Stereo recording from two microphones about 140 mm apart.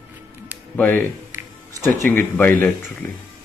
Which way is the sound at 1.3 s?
15° right (ahead or behind).